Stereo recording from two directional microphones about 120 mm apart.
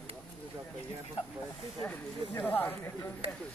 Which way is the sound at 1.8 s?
15° left (ahead or behind).